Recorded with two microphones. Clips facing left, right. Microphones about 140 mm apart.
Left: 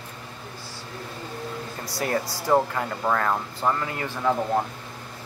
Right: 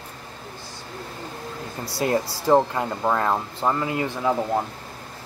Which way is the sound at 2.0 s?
25° right (ahead or behind).